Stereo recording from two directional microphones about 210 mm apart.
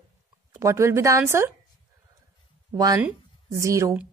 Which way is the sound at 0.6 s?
15° right (ahead or behind).